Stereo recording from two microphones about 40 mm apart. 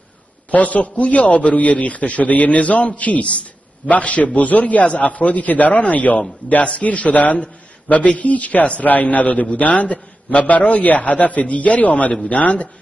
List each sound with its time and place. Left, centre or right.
0.5 s a man's voice: left